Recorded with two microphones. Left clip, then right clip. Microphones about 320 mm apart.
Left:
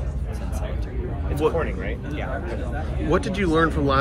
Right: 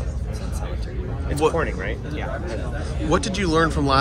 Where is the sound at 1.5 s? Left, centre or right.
Right.